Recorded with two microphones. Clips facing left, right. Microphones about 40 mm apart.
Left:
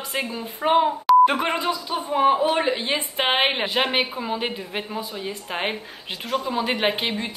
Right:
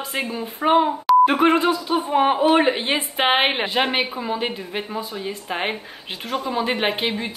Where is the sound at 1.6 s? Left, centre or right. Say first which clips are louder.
Right 5 dB; right.